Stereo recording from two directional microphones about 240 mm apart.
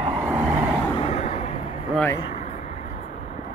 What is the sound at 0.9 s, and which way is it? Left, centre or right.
Vehicle, left.